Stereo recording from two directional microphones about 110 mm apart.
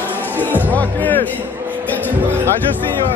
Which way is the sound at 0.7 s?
15° left (ahead or behind).